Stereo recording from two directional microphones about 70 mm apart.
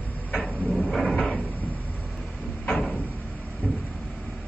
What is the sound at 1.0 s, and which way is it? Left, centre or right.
Cupboard open or close, centre.